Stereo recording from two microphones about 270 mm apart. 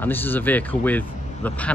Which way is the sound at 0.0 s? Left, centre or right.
Centre.